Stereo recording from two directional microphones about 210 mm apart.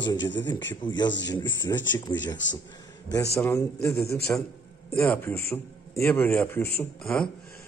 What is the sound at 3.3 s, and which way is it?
A man's voice, 15° left (ahead or behind).